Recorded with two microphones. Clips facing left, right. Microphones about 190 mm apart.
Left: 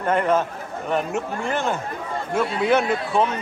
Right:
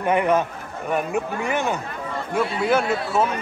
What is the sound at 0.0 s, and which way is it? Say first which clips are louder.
A man's voice: right 1 dB; 15° right (ahead or behind).